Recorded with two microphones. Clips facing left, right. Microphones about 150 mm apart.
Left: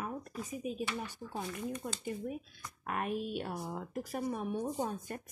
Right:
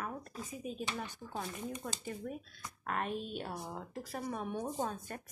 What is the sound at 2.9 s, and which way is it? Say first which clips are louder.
A woman's voice: left 2 dB; 10° left (ahead or behind).